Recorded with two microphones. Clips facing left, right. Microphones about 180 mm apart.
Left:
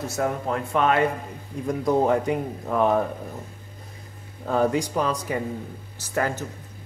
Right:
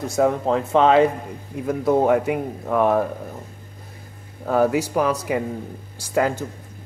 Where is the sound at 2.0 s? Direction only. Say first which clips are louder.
Right 3 dB; 10° right (ahead or behind).